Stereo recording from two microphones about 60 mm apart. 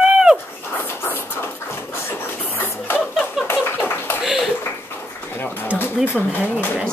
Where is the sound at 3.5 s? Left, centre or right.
Left.